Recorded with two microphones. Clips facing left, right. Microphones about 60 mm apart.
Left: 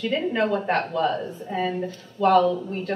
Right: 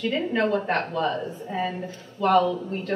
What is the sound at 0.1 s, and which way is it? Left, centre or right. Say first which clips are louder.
A woman's voice: left 1 dB; centre.